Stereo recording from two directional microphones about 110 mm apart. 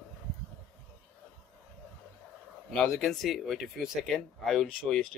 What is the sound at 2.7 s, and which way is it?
Speech, centre (ahead or behind).